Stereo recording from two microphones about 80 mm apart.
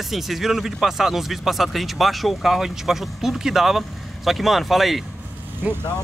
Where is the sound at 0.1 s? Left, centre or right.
Centre.